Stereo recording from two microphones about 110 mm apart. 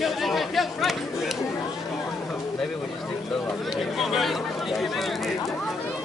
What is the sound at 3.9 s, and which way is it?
Speech, centre (ahead or behind).